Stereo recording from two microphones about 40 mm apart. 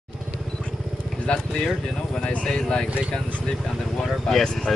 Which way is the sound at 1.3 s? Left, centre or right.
Left.